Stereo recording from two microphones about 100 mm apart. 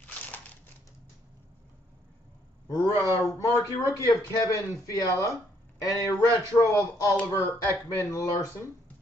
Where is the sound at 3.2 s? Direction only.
30° left (ahead or behind).